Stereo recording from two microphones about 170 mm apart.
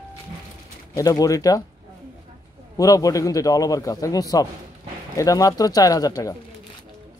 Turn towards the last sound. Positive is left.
turn(degrees=20)  # may be behind; listen again after turning